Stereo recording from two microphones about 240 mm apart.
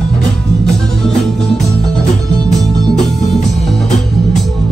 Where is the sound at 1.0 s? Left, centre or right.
Centre.